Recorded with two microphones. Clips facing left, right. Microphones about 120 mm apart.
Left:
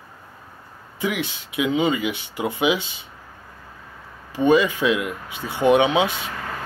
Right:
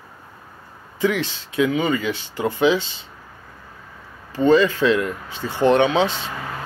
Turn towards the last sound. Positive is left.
turn(degrees=10)  # may be behind; listen again after turning